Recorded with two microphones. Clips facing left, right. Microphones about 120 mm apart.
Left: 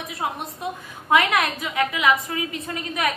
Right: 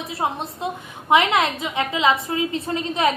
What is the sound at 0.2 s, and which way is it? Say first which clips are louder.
A woman's voice: right 3 dB; 30° right (ahead or behind).